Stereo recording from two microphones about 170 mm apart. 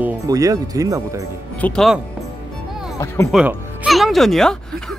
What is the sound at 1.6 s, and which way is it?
Speech, 5° left (ahead or behind).